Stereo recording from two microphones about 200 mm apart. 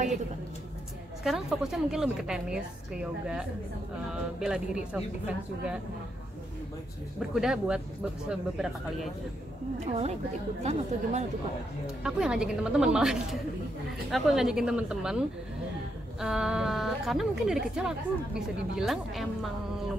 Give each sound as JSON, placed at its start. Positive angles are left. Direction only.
{"t": 1.2, "sound": "a woman's voice", "side_deg": 0}
{"t": 7.2, "sound": "a woman's voice", "side_deg": 0}
{"t": 9.8, "sound": "speech", "side_deg": -30}
{"t": 11.8, "sound": "a woman's voice", "side_deg": -5}